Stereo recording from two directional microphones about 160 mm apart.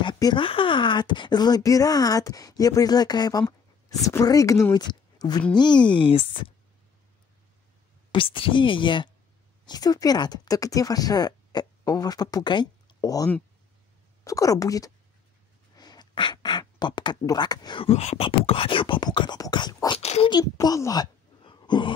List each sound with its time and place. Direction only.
0.0 s speech: 30° left (ahead or behind)
8.1 s speech: 35° left (ahead or behind)
17.8 s speech: 40° left (ahead or behind)
20.0 s a child's voice: 40° left (ahead or behind)
20.2 s a child's voice: 25° left (ahead or behind)